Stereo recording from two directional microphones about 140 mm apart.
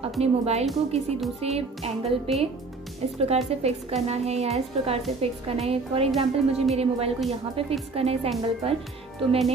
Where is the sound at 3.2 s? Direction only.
50° right (ahead or behind).